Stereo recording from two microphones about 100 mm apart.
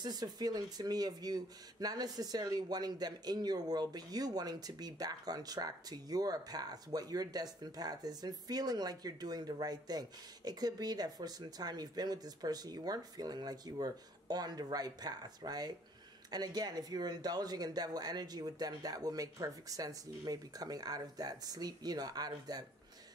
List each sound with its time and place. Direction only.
0.0 s speech: 40° right (ahead or behind)